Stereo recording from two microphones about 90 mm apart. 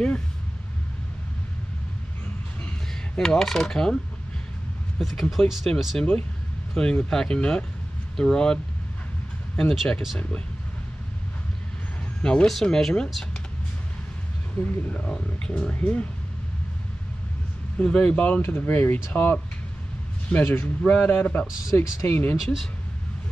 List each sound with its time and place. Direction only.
3.2 s coin: 5° left (ahead or behind)
6.7 s speech: 5° left (ahead or behind)
9.6 s speech: 5° left (ahead or behind)
12.2 s speech: 10° left (ahead or behind)
15.0 s speech: 10° left (ahead or behind)
17.7 s speech: 15° left (ahead or behind)